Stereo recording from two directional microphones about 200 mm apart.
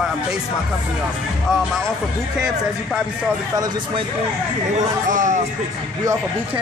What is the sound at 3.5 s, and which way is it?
Speech, 20° right (ahead or behind).